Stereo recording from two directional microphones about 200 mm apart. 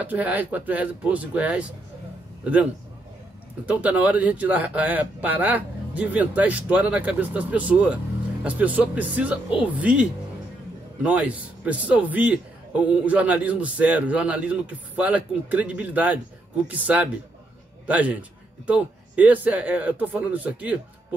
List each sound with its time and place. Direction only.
0.0 s a man's voice: 10° right (ahead or behind)